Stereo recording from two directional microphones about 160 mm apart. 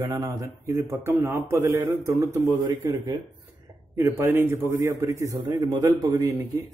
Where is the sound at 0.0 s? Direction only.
20° right (ahead or behind).